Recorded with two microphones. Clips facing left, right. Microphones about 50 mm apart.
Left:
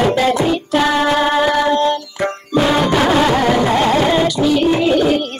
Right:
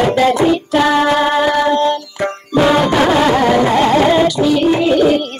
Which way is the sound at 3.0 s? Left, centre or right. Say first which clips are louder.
Right 2 dB; centre.